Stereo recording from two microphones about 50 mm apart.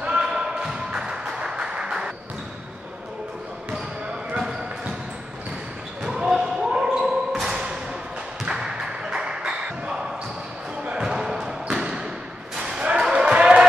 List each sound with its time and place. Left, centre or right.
0.0 s a sound: centre
4.4 s basketball bounce: centre
6.0 s basketball bounce: centre
8.5 s thump: centre
10.9 s basketball bounce: centre
12.5 s a sound: centre
12.8 s basketball bounce: centre